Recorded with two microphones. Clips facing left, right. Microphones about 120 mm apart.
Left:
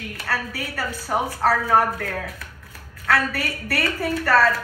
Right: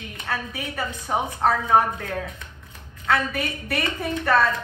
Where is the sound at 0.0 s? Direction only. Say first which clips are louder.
Left 2 dB; 20° right (ahead or behind).